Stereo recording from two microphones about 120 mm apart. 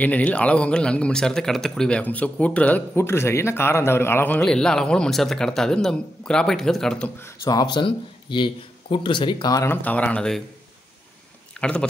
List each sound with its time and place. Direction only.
0.0 s speech: 10° left (ahead or behind)
7.2 s speech: 25° left (ahead or behind); by 9.5 s 40° left (ahead or behind)
9.5 s speech: 20° left (ahead or behind)
11.6 s speech: 10° left (ahead or behind)